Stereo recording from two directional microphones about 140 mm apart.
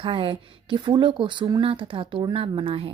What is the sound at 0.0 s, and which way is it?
Speech, 40° right (ahead or behind).